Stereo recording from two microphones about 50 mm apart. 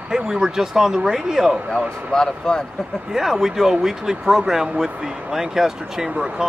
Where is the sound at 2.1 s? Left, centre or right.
Centre.